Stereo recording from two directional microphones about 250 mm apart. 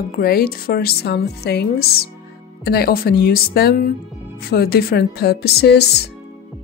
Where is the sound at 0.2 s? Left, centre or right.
Left.